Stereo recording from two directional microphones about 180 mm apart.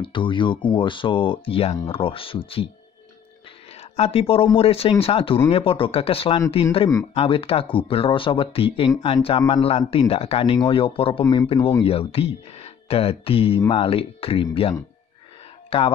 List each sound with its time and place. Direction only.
0.0 s speech: 25° left (ahead or behind)
3.7 s speech: 35° left (ahead or behind)